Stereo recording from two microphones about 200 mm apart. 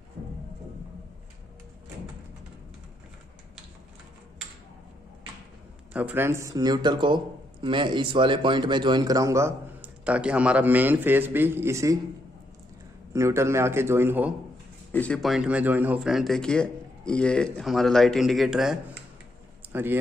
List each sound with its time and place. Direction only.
5.9 s speech: 10° right (ahead or behind)
13.1 s speech: 15° right (ahead or behind)
14.9 s speech: 5° left (ahead or behind); by 20.0 s 10° right (ahead or behind)